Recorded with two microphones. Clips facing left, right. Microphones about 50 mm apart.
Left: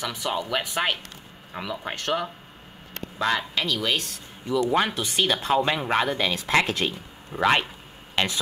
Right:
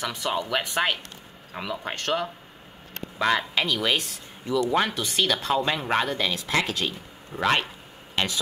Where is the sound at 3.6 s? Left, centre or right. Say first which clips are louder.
Right 1 dB; centre.